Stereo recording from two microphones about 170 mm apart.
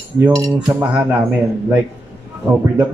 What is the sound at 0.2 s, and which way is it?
Cutlery, 20° right (ahead or behind).